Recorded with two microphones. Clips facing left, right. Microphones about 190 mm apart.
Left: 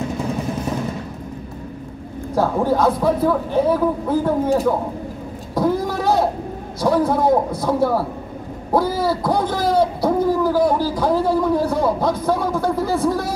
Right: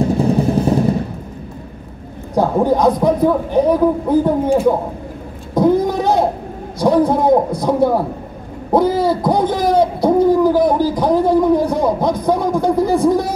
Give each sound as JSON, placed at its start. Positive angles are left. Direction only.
{"t": 0.0, "sound": "music", "side_deg": -35}
{"t": 2.3, "sound": "speech", "side_deg": -20}
{"t": 5.5, "sound": "vehicle", "side_deg": -20}
{"t": 6.8, "sound": "a man's voice", "side_deg": -15}